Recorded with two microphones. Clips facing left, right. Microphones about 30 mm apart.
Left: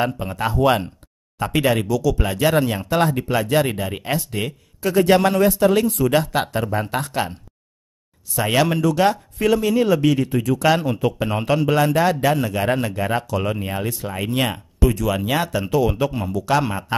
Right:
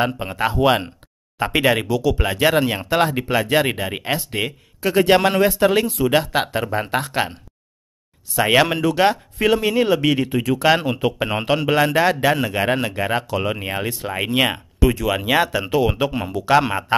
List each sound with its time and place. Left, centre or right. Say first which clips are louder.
0.0 s a man's voice: right 2 dB; right
8.4 s a man's voice: right 2 dB; right